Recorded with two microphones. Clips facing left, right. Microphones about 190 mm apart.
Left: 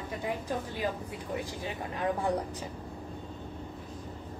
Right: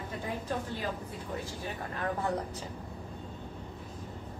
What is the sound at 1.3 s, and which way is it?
Speech, 15° left (ahead or behind).